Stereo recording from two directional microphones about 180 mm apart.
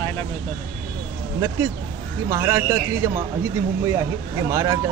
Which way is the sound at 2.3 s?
15° right (ahead or behind).